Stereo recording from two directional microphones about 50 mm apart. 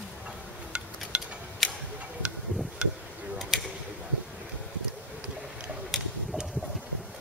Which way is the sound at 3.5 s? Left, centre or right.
Centre.